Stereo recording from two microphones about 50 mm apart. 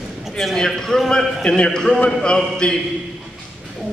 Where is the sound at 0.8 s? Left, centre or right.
Centre.